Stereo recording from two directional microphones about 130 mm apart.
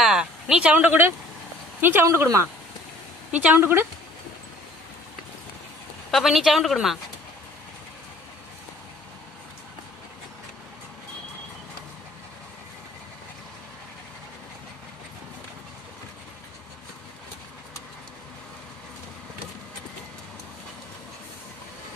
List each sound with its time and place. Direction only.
0.0 s speech: 5° right (ahead or behind); by 2.4 s 25° right (ahead or behind)
3.3 s speech: 15° right (ahead or behind)
6.1 s a woman's voice: centre (ahead or behind)